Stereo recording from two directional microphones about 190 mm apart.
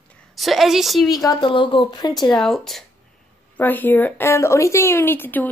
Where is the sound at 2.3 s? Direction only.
Centre (ahead or behind).